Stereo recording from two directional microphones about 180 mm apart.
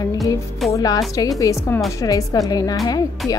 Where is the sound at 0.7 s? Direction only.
20° left (ahead or behind).